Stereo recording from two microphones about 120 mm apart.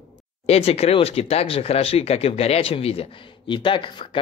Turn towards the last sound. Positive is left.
turn(degrees=45)  # may be behind; listen again after turning